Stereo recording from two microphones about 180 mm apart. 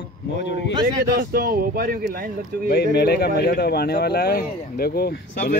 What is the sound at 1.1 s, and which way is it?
Speech, 55° right (ahead or behind).